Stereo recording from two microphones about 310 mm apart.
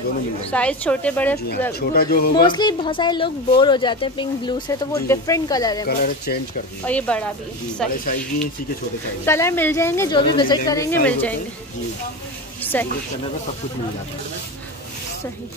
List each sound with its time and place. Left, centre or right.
0.5 s a woman's voice: centre
1.7 s speech: left
2.4 s speech: centre
5.9 s speech: left
6.9 s a woman's voice: centre
9.2 s a woman's voice: centre
12.7 s a woman's voice: centre